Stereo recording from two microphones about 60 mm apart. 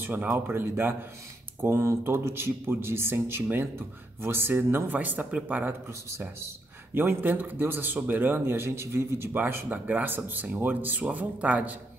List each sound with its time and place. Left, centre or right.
0.0 s a man's voice: right
1.6 s a man's voice: right
6.1 s a man's voice: right